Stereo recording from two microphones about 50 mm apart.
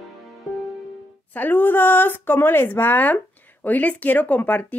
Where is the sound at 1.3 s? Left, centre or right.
Left.